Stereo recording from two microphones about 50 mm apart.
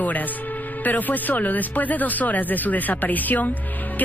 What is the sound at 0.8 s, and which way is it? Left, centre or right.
A woman's voice, left.